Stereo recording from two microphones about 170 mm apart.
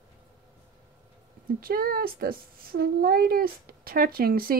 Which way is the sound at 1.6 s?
60° right (ahead or behind).